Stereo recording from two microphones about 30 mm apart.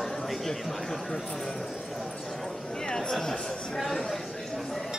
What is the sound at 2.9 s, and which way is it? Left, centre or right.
Speech, left.